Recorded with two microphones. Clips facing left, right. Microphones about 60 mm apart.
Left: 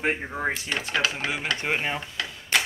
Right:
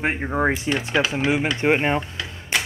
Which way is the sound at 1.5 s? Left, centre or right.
Right.